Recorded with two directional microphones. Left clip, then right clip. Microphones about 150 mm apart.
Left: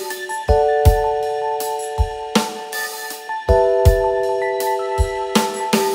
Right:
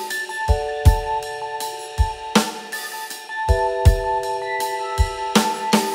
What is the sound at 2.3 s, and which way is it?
Music, centre (ahead or behind).